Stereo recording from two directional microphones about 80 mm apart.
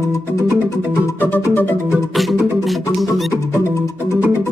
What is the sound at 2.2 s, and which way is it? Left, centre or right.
Music, centre.